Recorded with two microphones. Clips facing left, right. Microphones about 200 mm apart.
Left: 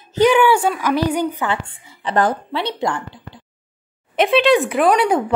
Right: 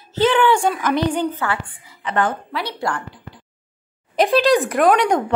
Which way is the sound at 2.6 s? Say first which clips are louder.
Left 3 dB; 20° left (ahead or behind).